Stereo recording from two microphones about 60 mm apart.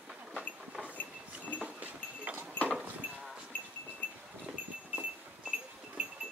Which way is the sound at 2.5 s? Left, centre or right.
Left.